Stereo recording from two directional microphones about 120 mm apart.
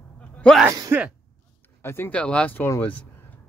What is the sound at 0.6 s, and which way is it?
Speech, 25° right (ahead or behind).